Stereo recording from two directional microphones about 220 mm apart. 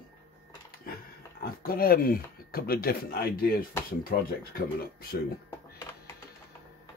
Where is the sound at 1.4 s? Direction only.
40° left (ahead or behind).